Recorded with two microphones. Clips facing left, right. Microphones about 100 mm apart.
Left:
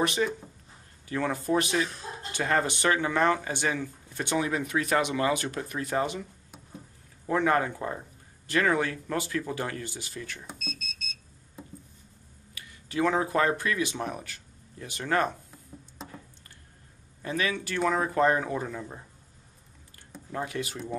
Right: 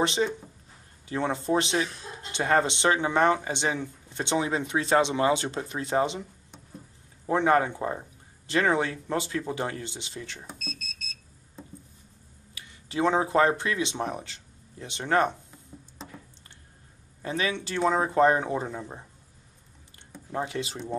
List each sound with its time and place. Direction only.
0.0 s speech: 25° right (ahead or behind)
7.2 s speech: 25° right (ahead or behind)
10.4 s a sound: centre (ahead or behind)
12.5 s speech: 25° right (ahead or behind)
15.5 s a sound: 10° left (ahead or behind)
17.2 s speech: 25° right (ahead or behind)
20.2 s speech: 25° right (ahead or behind)